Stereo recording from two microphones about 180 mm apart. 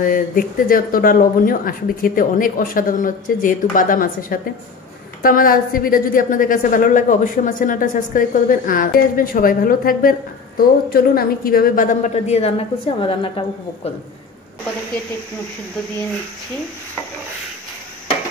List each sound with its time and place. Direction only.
0.0 s a woman's voice: 50° left (ahead or behind); by 13.3 s 30° left (ahead or behind)